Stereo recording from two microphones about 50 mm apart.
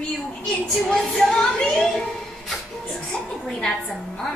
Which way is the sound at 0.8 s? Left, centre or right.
Centre.